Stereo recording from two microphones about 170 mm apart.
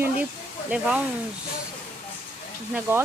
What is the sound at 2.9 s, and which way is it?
Speech, 15° right (ahead or behind).